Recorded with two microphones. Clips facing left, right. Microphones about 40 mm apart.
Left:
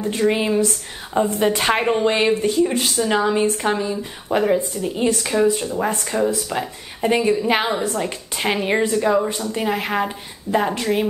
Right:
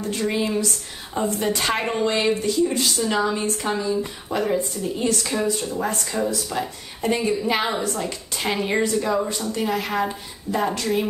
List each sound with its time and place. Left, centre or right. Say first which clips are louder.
0.0 s speech: left 4 dB; left